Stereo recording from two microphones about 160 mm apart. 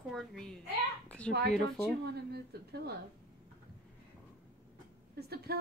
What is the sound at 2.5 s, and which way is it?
Speech, 85° right.